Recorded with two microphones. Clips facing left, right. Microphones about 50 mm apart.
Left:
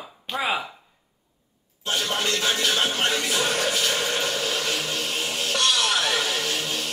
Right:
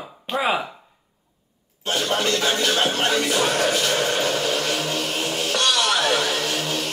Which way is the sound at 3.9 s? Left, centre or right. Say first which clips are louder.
Right 4 dB; right.